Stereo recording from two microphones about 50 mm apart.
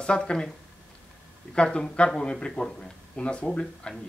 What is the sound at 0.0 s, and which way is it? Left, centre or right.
Speech, centre.